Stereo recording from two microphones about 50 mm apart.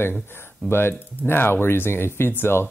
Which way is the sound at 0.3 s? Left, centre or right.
Left.